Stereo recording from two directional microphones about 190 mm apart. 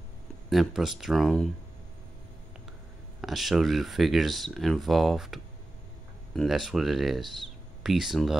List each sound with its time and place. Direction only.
0.5 s speech: centre (ahead or behind)
3.2 s speech: centre (ahead or behind)